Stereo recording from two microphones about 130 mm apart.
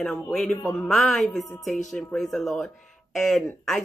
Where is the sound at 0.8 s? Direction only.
Centre (ahead or behind).